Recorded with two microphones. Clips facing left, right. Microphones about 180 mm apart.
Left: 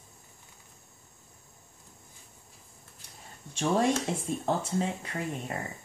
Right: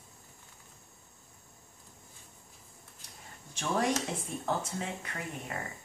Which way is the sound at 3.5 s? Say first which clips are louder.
Left 4 dB; 30° left (ahead or behind).